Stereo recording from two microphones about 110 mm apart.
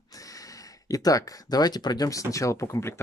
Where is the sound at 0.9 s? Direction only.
30° left (ahead or behind).